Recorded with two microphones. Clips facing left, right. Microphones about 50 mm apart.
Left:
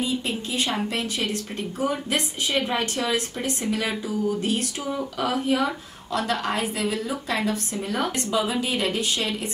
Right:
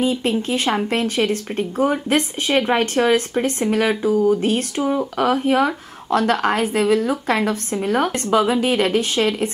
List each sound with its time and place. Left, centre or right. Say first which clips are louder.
0.0 s a woman's voice: right 7 dB; right